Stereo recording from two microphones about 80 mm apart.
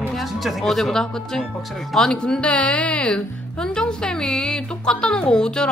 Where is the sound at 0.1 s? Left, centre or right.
Centre.